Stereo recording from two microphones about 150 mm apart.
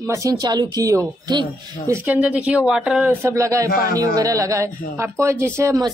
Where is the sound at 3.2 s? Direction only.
20° right (ahead or behind).